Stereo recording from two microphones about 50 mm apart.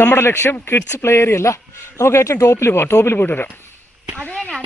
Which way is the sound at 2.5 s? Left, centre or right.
Left.